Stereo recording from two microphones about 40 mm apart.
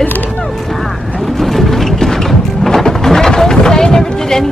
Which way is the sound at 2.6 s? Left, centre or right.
Centre.